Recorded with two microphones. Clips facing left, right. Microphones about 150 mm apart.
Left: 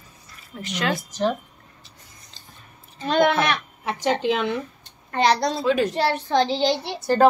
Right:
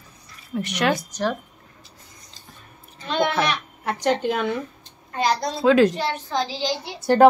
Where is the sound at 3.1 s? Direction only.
50° left (ahead or behind).